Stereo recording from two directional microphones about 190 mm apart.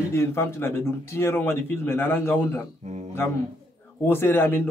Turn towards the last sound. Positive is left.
turn(degrees=10)  # may be behind; listen again after turning